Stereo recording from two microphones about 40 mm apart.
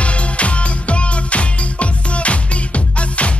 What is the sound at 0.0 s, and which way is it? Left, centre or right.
Music, left.